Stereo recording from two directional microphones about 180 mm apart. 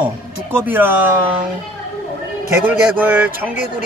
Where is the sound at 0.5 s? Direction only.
10° right (ahead or behind).